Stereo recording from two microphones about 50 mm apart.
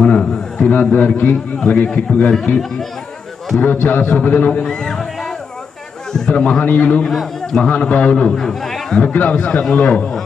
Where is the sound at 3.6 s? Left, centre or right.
Left.